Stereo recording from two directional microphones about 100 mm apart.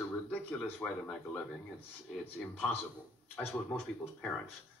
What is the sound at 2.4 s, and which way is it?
Speech, 5° left (ahead or behind).